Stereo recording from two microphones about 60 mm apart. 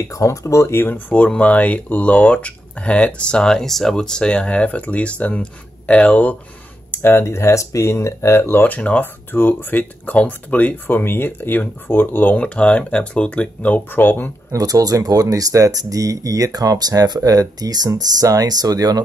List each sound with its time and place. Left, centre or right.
0.1 s speech: left
0.8 s speech: left
6.9 s speech: left
8.6 s speech: left
14.5 s speech: right